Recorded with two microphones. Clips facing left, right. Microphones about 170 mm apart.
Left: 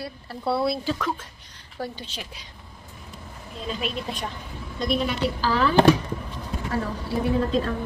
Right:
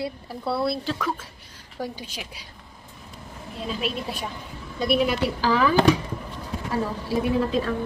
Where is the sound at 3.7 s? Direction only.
5° right (ahead or behind).